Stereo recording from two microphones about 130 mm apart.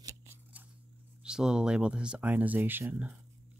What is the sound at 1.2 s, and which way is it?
Speech, 5° right (ahead or behind).